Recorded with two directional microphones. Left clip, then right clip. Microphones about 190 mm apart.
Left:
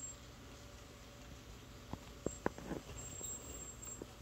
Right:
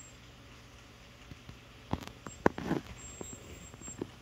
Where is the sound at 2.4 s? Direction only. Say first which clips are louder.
Right 14 dB; 45° right (ahead or behind).